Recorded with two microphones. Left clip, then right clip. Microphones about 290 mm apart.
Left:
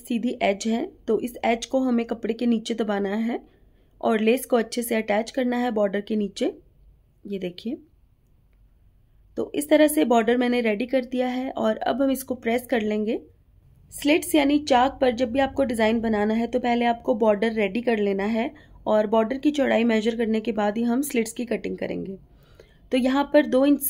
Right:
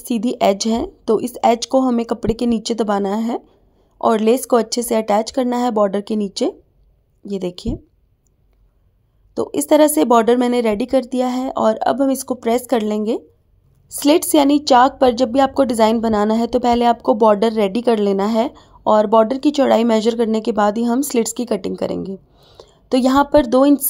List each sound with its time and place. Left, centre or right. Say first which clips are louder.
0.0 s speech: right 8 dB; right
9.3 s speech: right 6 dB; centre